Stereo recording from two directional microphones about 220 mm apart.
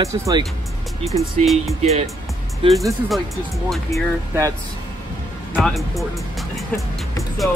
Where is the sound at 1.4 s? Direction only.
Centre (ahead or behind).